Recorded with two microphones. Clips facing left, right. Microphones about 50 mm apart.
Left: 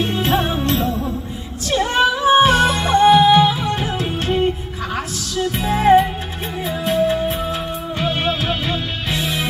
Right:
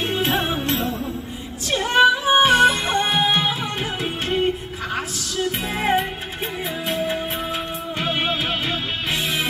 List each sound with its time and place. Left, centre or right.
0.0 s music: centre